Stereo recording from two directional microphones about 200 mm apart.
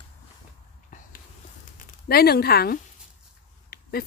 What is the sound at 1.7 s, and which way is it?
Speech, 50° left (ahead or behind).